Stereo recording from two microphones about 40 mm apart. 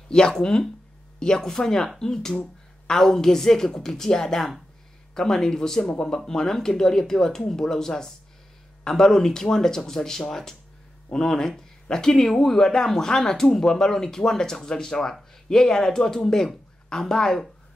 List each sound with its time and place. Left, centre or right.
0.1 s speech: centre